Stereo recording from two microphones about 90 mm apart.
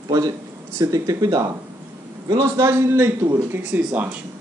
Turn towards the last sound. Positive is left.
turn(degrees=-15)  # may be behind; listen again after turning